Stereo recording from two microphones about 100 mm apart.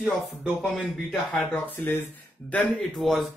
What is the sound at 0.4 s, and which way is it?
Speech, 5° right (ahead or behind).